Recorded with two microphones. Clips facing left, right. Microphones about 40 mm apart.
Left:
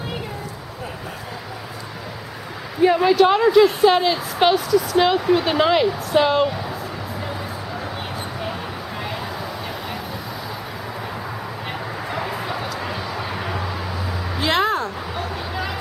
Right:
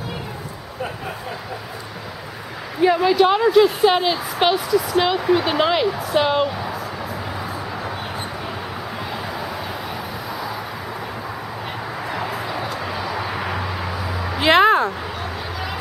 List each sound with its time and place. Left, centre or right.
3.1 s speech: centre
12.7 s vehicle: centre
14.4 s a sound: right